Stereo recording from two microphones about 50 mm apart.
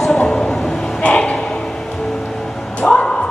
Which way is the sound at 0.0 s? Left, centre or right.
Centre.